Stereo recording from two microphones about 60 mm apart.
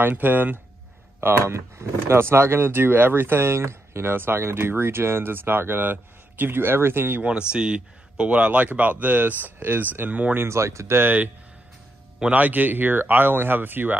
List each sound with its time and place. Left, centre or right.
0.0 s speech: right
1.4 s speech: right
7.2 s speech: centre
10.3 s speech: right
10.6 s speech: right
11.0 s speech: right
12.3 s speech: right